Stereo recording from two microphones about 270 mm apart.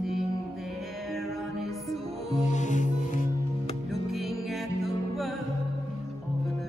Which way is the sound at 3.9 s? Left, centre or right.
Centre.